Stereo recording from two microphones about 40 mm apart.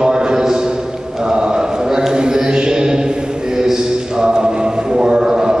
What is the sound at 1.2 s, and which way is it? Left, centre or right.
Mantra, centre.